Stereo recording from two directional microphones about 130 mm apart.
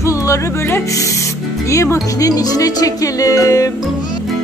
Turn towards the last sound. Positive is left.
turn(degrees=25)  # may be behind; listen again after turning